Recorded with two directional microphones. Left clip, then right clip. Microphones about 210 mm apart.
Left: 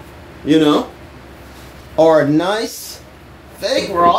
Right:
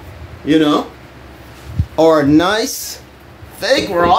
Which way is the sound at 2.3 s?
30° right (ahead or behind).